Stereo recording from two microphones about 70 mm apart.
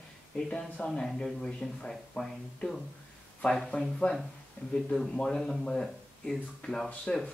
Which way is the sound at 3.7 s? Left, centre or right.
Left.